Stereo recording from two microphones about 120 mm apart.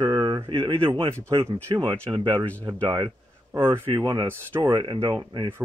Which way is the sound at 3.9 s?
35° right (ahead or behind).